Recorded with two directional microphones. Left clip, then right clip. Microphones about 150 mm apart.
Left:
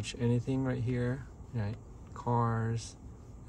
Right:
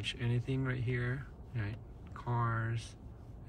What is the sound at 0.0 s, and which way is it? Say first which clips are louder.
Speech: left 5 dB; 30° left (ahead or behind).